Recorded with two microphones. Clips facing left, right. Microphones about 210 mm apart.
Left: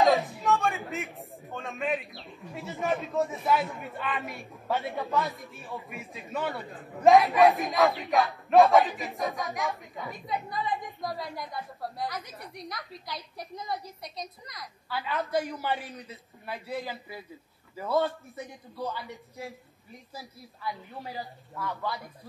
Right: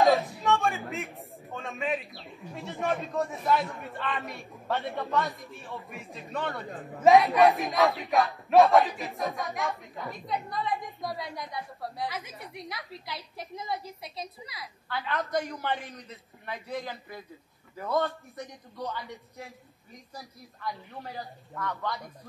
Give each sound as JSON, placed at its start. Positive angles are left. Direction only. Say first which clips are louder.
{"t": 0.0, "sound": "a man's voice", "louder": "even", "side_deg": 0}
{"t": 15.0, "sound": "a man's voice", "louder": "left 1 dB", "side_deg": 5}